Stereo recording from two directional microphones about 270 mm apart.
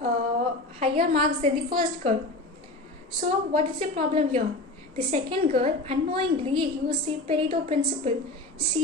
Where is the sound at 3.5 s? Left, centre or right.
Right.